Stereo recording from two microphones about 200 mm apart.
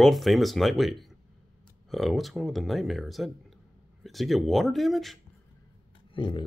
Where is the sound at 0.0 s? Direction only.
Centre (ahead or behind).